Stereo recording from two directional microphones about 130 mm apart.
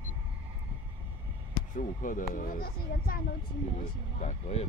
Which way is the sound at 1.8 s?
90° left.